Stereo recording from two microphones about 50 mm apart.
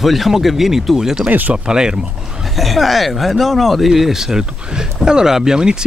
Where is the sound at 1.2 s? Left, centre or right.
Right.